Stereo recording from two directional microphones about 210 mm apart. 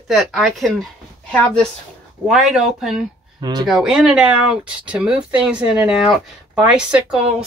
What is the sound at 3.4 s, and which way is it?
Speech, 20° right (ahead or behind).